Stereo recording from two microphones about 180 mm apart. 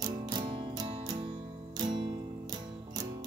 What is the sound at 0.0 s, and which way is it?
Music, 25° right (ahead or behind).